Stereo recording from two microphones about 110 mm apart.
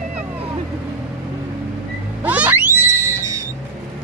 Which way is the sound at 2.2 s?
15° right (ahead or behind).